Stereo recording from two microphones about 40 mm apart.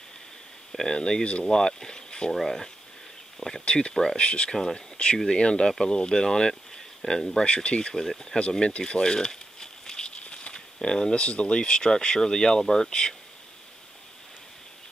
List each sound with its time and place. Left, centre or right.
0.7 s speech: centre
1.4 s speech: centre
2.3 s speech: centre
3.6 s speech: left
3.9 s speech: centre
4.2 s speech: left
4.5 s speech: centre
4.7 s speech: left
7.4 s speech: left
7.9 s speech: centre
8.4 s speech: left
10.1 s a sound: left
11.2 s speech: left; by 12.9 s centre